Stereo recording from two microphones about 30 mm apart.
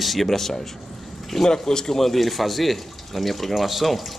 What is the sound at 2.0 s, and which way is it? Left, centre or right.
A man's voice, centre.